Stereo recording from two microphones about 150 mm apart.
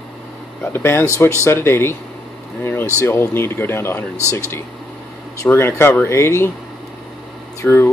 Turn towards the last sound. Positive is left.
turn(degrees=15)  # may be behind; listen again after turning